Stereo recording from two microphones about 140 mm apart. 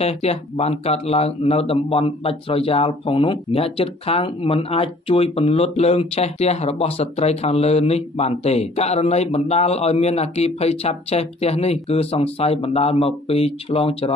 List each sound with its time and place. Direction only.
0.0 s speech: 50° left (ahead or behind)